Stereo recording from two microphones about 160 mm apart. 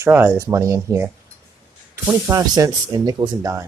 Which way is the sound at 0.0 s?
15° right (ahead or behind).